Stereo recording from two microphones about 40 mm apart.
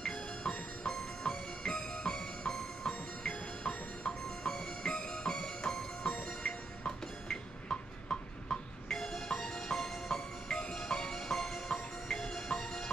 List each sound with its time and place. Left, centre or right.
0.0 s music: centre